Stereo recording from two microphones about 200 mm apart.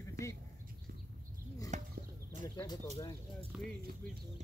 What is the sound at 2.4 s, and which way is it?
Bird, 15° left (ahead or behind).